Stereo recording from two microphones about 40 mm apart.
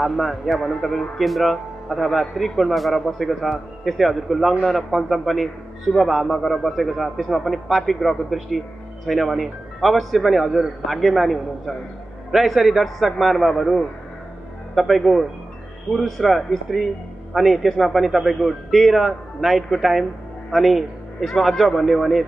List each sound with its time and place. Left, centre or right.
0.0 s a man's voice: centre